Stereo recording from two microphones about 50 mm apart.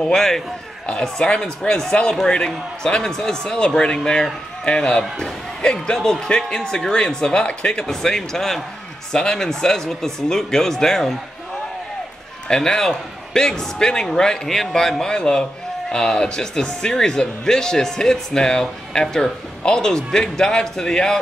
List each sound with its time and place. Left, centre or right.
0.1 s speech: centre
12.4 s speech: centre